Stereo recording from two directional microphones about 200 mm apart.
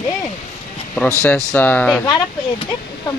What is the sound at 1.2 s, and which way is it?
Speech, 10° left (ahead or behind).